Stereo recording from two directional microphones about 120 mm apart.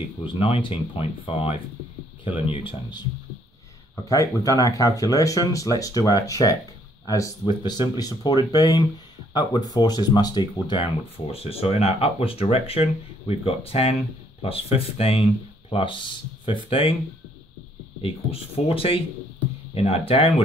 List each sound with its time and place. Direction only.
0.2 s speech: 45° left (ahead or behind)
3.9 s speech: 25° left (ahead or behind)
7.4 s speech: 40° left (ahead or behind)
11.3 s speech: 55° left (ahead or behind)
15.7 s speech: 45° left (ahead or behind)
16.6 s speech: 50° left (ahead or behind)
18.0 s speech: 55° left (ahead or behind)